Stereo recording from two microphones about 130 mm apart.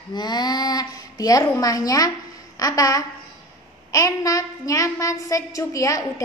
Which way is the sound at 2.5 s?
30° left (ahead or behind).